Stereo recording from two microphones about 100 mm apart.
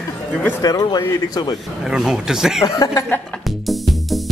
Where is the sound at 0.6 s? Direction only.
40° left (ahead or behind).